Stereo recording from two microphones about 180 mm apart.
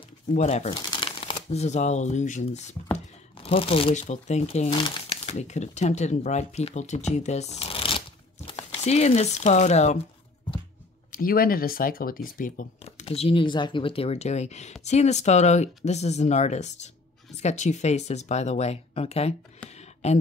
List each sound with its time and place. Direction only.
0.3 s speech: 40° left (ahead or behind)
0.8 s speech: 30° left (ahead or behind)
11.1 s speech: 55° left (ahead or behind)
12.8 s speech: 35° left (ahead or behind)